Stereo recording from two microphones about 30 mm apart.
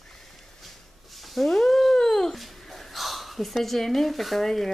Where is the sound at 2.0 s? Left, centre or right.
Left.